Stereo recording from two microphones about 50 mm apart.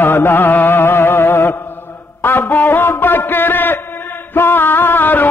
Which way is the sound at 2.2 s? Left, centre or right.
Left.